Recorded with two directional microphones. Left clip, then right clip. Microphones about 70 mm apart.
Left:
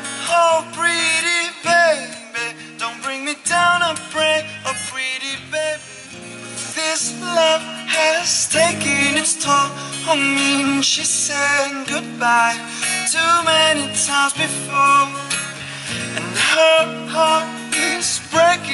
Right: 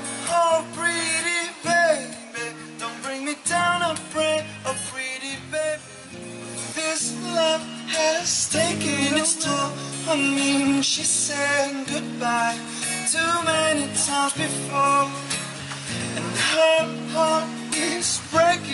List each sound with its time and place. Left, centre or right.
0.2 s music: left
6.8 s music: left